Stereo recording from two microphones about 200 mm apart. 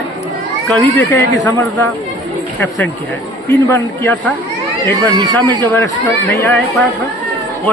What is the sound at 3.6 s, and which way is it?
Speech, 10° left (ahead or behind).